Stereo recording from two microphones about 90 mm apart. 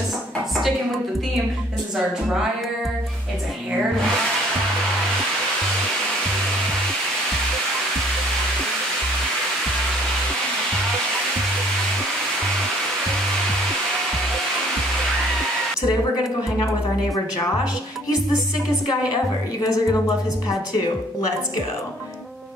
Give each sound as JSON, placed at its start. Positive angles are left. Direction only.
{"t": 19.6, "sound": "a woman's voice", "side_deg": 40}